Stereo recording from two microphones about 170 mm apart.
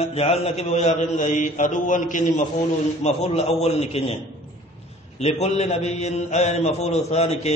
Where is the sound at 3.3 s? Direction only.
35° left (ahead or behind).